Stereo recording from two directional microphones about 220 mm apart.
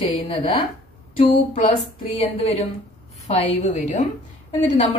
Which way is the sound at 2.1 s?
25° left (ahead or behind).